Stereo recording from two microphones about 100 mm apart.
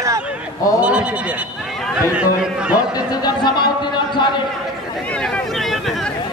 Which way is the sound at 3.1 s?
45° left (ahead or behind).